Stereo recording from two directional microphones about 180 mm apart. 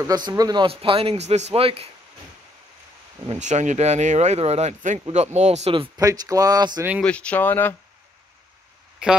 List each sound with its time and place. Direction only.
0.0 s a man's voice: 20° right (ahead or behind)
3.3 s speech: 40° right (ahead or behind)
5.9 s a man's voice: 20° right (ahead or behind)
7.0 s speech: 5° left (ahead or behind)